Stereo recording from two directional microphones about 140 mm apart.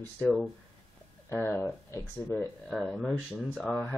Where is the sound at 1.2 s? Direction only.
15° left (ahead or behind).